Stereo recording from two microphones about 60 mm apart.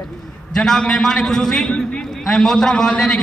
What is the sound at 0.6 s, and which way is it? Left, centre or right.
A man's voice, centre.